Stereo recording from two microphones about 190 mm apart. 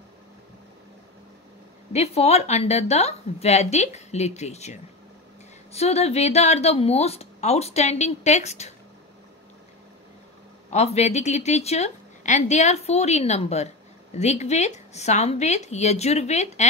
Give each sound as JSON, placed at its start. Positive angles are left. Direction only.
{"t": 1.9, "sound": "a woman's voice", "side_deg": 35}
{"t": 10.7, "sound": "a woman's voice", "side_deg": 35}